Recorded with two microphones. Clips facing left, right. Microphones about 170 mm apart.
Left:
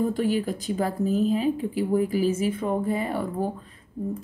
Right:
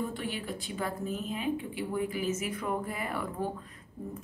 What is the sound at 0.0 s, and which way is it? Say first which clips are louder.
Speech: left 11 dB; 40° left (ahead or behind).